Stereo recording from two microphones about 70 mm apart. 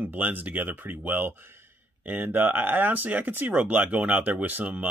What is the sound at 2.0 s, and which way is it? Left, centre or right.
Speech, right.